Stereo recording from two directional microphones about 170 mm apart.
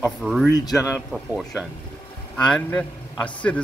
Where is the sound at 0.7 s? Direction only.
Centre (ahead or behind).